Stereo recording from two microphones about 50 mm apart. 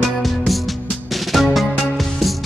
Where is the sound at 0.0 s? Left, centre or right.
Centre.